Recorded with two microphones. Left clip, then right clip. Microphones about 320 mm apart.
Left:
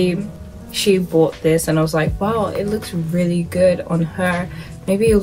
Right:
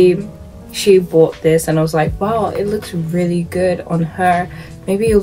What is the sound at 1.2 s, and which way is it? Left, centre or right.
Speech, centre.